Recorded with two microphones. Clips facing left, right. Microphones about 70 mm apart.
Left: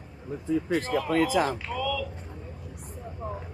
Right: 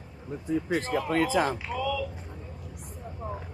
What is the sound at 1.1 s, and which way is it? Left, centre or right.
Speech, right.